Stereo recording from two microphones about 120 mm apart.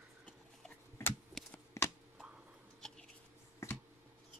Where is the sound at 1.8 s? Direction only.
25° left (ahead or behind).